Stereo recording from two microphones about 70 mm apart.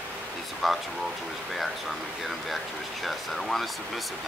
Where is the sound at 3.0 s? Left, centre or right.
Centre.